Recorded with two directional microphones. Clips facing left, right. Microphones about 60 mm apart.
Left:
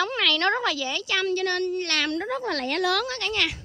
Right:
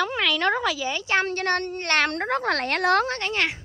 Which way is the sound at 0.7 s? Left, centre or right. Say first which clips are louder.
Right 1 dB; centre.